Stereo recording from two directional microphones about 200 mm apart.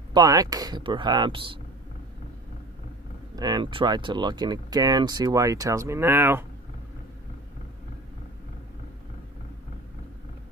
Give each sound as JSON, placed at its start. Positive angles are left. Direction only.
{"t": 0.1, "sound": "speech", "side_deg": -20}
{"t": 3.3, "sound": "speech", "side_deg": -20}